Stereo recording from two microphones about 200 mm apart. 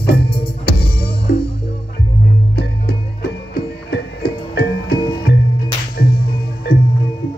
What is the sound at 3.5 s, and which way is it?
Music, 55° left (ahead or behind).